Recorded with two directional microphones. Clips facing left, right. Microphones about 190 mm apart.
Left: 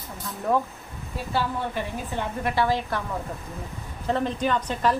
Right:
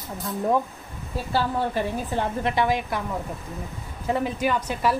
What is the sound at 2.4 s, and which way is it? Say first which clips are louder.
Speech: left 2 dB; 15° right (ahead or behind).